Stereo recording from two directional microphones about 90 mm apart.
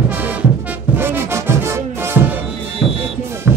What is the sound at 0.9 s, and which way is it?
Music, 25° right (ahead or behind).